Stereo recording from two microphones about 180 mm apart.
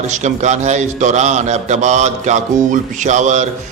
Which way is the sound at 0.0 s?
40° right (ahead or behind).